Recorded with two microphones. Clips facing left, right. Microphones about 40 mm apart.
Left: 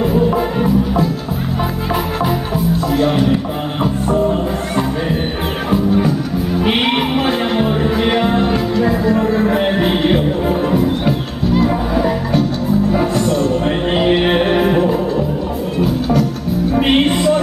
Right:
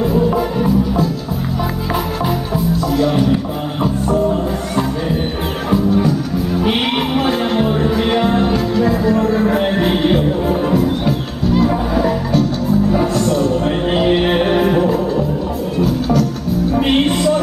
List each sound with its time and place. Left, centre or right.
0.0 s music: centre
3.8 s music: centre